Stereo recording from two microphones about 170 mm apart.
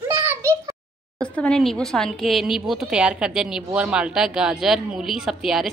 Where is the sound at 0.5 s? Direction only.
20° right (ahead or behind).